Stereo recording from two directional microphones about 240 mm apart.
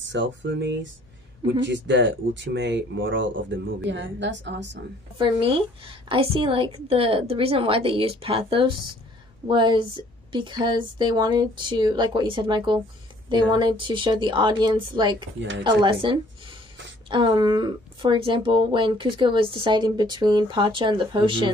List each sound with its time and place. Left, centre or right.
0.0 s speech: right
5.1 s speech: right